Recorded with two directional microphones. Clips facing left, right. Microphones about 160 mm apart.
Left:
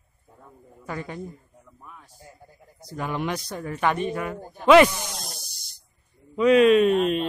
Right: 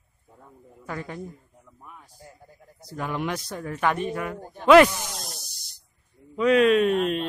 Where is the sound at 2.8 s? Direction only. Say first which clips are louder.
Left 1 dB; centre (ahead or behind).